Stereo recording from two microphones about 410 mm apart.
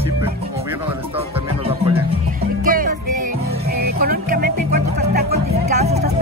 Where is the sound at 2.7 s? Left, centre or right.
Centre.